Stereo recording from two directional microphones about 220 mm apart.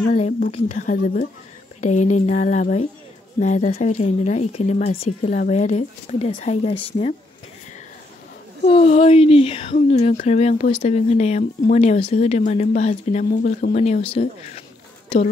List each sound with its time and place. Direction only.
0.1 s speech: 30° left (ahead or behind)
8.6 s speech: 30° left (ahead or behind)